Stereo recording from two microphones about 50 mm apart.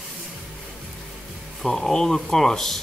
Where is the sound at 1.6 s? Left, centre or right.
Centre.